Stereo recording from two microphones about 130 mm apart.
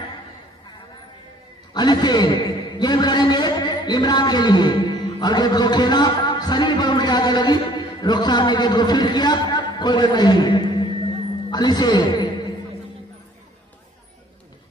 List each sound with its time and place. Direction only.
1.7 s a man's voice: 35° left (ahead or behind)